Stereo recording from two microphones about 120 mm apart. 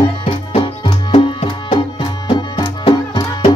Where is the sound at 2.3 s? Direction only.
40° left (ahead or behind).